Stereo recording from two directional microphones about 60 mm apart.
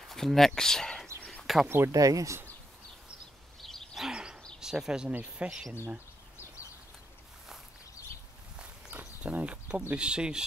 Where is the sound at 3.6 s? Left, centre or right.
Centre.